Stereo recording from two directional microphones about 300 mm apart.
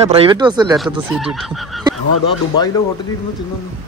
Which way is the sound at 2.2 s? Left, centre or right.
Centre.